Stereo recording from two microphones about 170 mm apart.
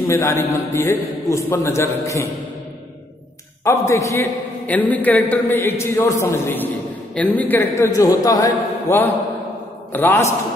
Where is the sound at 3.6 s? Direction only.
15° left (ahead or behind).